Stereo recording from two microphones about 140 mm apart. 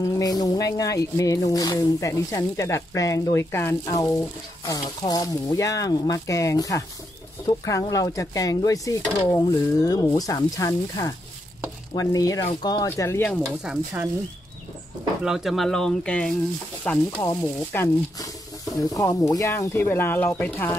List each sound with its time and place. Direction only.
0.0 s speech: 25° left (ahead or behind)
13.7 s speech: 5° right (ahead or behind)
15.2 s speech: centre (ahead or behind)
17.2 s speech: 20° left (ahead or behind)